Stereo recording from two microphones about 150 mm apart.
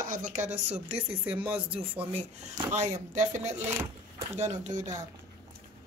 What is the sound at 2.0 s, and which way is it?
Speech, 45° right (ahead or behind).